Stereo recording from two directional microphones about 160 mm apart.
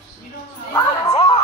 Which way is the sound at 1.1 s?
35° left (ahead or behind).